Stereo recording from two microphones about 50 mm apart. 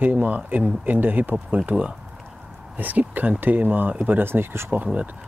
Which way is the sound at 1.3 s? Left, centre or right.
Right.